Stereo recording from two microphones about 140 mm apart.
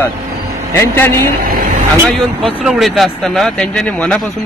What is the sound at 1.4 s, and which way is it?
Vehicle, 90° right.